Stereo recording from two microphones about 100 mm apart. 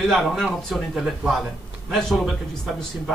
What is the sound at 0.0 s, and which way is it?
Speech, centre (ahead or behind).